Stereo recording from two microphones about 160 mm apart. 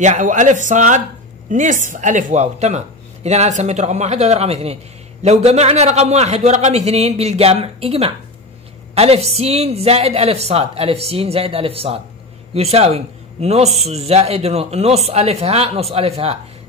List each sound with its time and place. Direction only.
0.0 s a man's voice: 50° right (ahead or behind)